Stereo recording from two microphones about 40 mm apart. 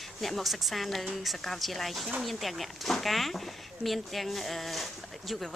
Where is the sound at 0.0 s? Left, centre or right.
Centre.